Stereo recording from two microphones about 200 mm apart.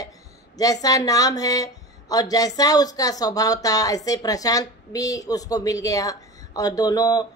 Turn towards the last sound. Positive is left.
turn(degrees=20)  # may be behind; listen again after turning